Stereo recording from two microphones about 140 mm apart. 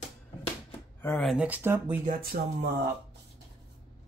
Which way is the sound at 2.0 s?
85° right.